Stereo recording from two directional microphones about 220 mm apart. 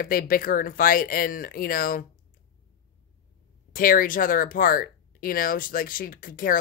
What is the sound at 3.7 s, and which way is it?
Speech, 40° left (ahead or behind).